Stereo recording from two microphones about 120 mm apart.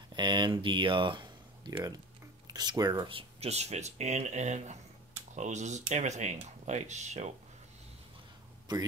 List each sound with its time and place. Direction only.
0.1 s speech: 40° right (ahead or behind); by 7.3 s 70° right (ahead or behind)
8.7 s speech: 35° right (ahead or behind)